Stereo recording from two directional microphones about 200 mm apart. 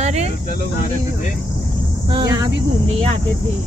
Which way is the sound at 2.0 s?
25° right (ahead or behind).